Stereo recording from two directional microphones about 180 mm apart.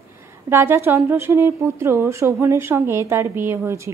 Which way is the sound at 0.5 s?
15° right (ahead or behind).